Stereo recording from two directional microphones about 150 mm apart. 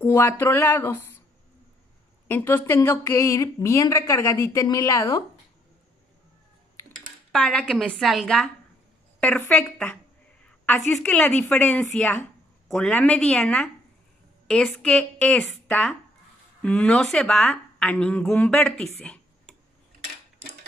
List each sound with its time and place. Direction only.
0.0 s a woman's voice: 15° left (ahead or behind)
2.2 s speech: 15° left (ahead or behind)
7.3 s a woman's voice: 5° left (ahead or behind)
10.4 s a sound: 10° left (ahead or behind)
10.9 s a woman's voice: 5° left (ahead or behind)
14.7 s a woman's voice: 5° left (ahead or behind)
18.9 s a sound: 5° left (ahead or behind)